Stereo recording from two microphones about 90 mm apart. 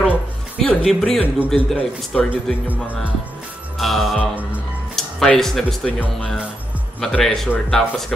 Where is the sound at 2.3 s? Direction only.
15° right (ahead or behind).